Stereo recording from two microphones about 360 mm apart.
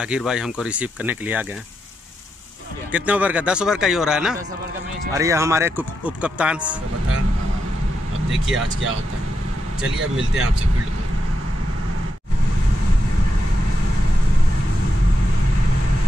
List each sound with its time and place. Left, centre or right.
0.0 s speech: centre
2.9 s speech: centre
10.1 s speech: right